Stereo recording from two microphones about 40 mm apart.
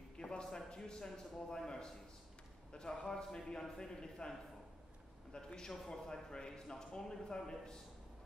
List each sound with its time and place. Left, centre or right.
0.2 s a man's voice: centre
2.7 s a man's voice: centre
5.3 s speech: centre